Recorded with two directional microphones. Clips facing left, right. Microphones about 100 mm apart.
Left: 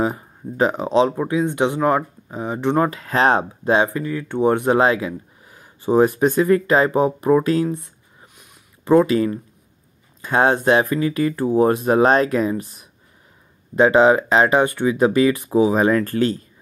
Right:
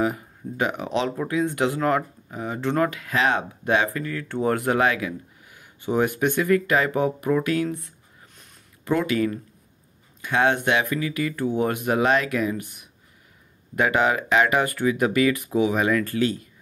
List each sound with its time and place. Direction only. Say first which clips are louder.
0.0 s speech: left 2 dB; 30° left (ahead or behind)
2.9 s speech: left 6 dB; 35° left (ahead or behind)